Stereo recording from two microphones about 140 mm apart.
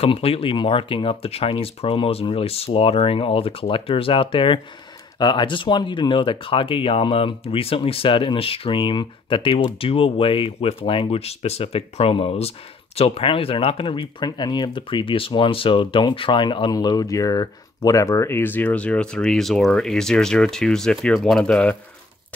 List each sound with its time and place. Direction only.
0.0 s speech: 45° left (ahead or behind); by 21.7 s 5° left (ahead or behind)